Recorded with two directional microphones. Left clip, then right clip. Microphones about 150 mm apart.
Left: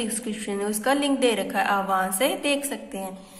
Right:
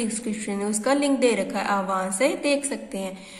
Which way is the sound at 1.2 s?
15° right (ahead or behind).